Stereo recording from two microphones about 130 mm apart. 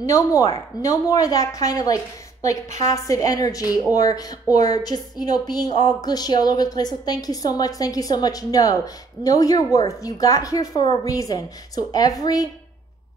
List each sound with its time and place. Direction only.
0.0 s a woman's voice: 25° left (ahead or behind)